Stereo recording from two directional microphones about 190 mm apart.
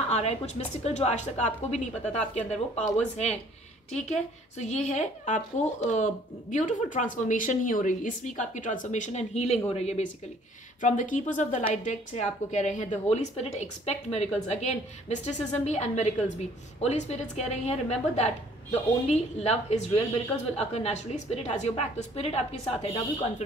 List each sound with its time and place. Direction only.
0.1 s speech: 35° left (ahead or behind)
4.6 s speech: 35° left (ahead or behind)